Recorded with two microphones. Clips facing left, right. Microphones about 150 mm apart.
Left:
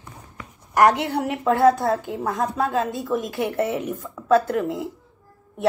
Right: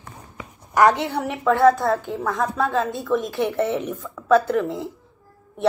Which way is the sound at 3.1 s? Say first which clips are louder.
Right 5 dB; centre (ahead or behind).